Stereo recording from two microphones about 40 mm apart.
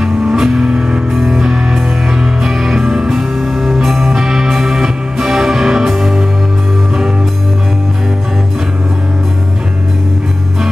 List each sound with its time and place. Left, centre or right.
0.0 s music: centre